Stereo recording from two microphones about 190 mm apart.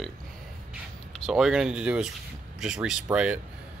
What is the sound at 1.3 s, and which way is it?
Speech, 5° right (ahead or behind).